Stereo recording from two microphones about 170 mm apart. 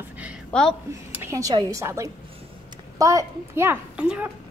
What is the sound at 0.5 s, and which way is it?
Speech, 5° left (ahead or behind).